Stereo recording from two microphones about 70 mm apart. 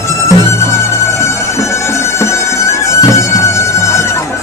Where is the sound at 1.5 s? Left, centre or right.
Left.